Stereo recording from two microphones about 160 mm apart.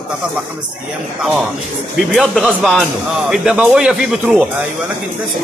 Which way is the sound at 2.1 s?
Centre (ahead or behind).